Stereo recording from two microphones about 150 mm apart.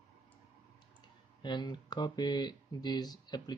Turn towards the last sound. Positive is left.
turn(degrees=25)  # may be behind; listen again after turning